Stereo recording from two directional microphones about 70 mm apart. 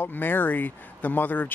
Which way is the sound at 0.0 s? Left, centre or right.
Left.